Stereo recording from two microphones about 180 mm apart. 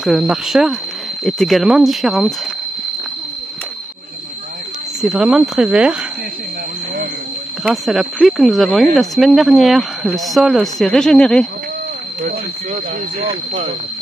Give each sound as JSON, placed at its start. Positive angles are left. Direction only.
{"t": 0.0, "sound": "speech", "side_deg": 0}
{"t": 5.0, "sound": "speech", "side_deg": 0}
{"t": 7.6, "sound": "speech", "side_deg": 0}
{"t": 12.2, "sound": "speech", "side_deg": -50}
{"t": 13.2, "sound": "speech", "side_deg": -30}